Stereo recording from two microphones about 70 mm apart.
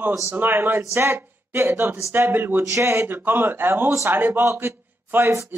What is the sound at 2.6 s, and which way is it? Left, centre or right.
Speech, right.